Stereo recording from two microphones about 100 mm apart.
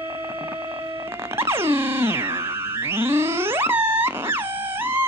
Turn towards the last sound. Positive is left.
turn(degrees=-20)  # may be behind; listen again after turning